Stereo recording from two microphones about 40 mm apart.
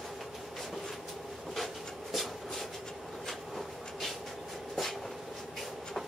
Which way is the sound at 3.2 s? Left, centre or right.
Centre.